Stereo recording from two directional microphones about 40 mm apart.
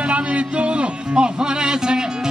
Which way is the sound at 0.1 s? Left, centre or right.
Right.